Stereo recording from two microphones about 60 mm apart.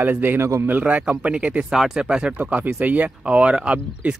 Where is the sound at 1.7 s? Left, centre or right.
Centre.